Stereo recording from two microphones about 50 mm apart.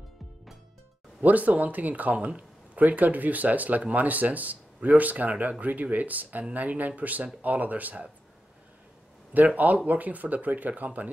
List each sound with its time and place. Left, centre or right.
1.2 s speech: right
9.3 s speech: right